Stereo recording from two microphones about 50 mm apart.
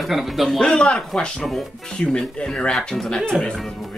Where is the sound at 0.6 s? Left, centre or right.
Centre.